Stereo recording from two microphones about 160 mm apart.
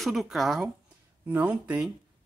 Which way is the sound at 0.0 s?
Centre (ahead or behind).